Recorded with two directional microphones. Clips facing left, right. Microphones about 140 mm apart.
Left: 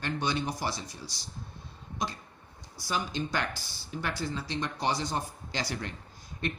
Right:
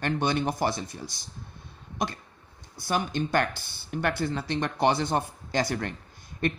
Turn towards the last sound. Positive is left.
turn(degrees=-55)  # may be behind; listen again after turning